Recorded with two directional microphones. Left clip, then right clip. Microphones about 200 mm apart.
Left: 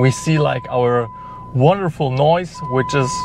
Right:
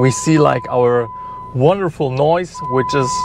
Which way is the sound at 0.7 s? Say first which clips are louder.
Right 3 dB; 5° right (ahead or behind).